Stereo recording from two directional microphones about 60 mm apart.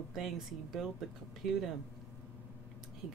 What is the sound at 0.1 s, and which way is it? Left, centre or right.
Speech, centre.